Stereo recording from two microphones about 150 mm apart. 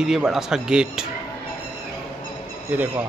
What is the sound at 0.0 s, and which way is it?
Speech, centre (ahead or behind).